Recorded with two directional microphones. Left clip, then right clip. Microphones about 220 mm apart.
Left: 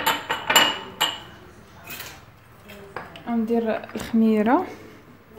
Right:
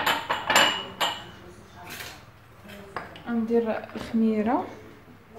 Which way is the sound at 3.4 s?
50° left (ahead or behind).